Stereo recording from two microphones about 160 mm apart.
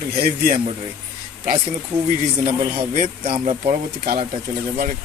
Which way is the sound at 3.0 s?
55° right (ahead or behind).